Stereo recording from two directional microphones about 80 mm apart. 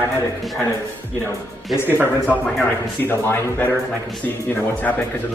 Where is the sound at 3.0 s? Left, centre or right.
Left.